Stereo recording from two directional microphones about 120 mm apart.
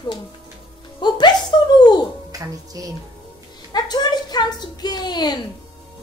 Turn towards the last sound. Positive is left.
turn(degrees=35)  # may be behind; listen again after turning